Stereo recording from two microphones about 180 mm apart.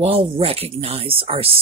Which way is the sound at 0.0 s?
30° right (ahead or behind).